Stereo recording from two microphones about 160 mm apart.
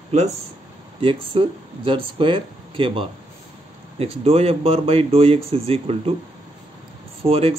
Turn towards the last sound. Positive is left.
turn(degrees=-40)  # may be behind; listen again after turning